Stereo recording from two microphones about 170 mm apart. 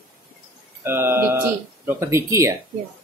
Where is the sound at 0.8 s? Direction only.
15° right (ahead or behind).